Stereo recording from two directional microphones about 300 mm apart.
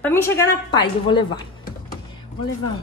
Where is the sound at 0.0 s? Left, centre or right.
Centre.